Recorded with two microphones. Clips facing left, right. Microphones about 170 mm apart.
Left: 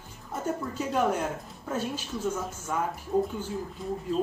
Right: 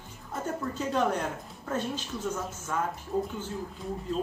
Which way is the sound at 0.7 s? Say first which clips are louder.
Even; 10° left (ahead or behind).